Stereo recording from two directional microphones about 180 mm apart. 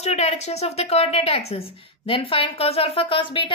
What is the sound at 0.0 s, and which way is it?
A woman's voice, 35° left (ahead or behind).